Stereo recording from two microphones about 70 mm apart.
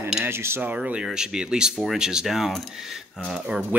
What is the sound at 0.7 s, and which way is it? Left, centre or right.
Speech, centre.